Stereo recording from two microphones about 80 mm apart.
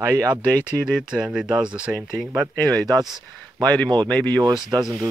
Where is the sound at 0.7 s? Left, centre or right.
Centre.